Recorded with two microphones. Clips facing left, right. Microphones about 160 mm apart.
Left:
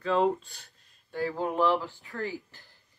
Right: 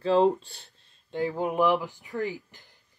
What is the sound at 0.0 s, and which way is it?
Speech, 30° right (ahead or behind).